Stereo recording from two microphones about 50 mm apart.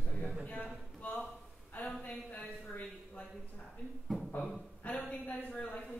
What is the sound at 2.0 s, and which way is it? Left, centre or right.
Speech, left.